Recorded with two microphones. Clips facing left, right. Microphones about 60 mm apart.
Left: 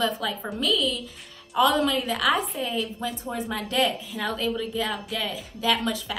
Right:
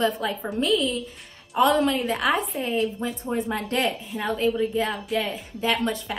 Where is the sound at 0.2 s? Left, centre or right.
Right.